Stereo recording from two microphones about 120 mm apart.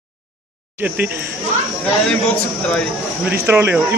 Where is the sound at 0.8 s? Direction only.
15° right (ahead or behind).